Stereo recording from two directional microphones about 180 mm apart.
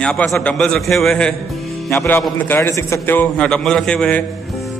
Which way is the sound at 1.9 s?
15° left (ahead or behind).